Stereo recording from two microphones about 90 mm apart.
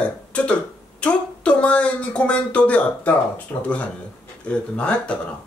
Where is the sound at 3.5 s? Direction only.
25° left (ahead or behind).